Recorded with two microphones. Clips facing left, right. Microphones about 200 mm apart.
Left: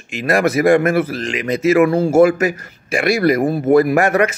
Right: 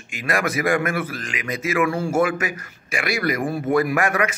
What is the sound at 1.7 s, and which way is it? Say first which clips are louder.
A man's voice: left 8 dB; 40° left (ahead or behind).